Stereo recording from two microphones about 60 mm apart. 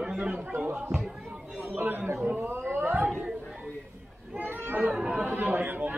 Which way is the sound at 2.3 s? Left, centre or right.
Right.